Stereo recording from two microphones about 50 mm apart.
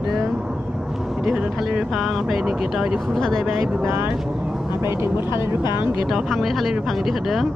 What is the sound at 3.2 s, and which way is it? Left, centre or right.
Speech, centre.